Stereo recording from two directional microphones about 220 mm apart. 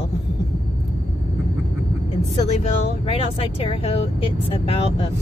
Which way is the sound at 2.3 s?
30° left (ahead or behind).